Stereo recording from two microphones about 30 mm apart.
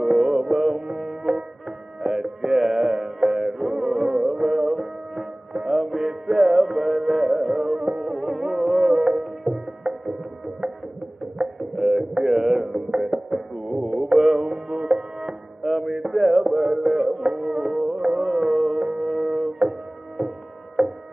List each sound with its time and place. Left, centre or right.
0.0 s music: centre
8.1 s music: centre
11.7 s music: centre
13.3 s music: centre
20.8 s a sound: centre